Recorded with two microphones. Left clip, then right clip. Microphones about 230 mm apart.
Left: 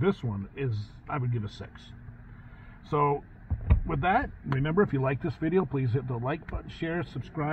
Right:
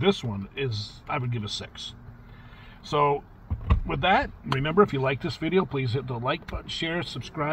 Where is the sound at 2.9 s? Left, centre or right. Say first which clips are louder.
Right 3 dB; right.